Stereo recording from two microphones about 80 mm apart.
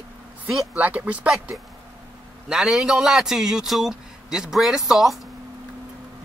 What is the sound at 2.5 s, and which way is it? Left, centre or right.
A man's voice, centre.